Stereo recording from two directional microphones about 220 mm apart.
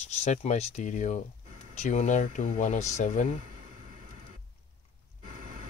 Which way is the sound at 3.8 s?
40° right (ahead or behind).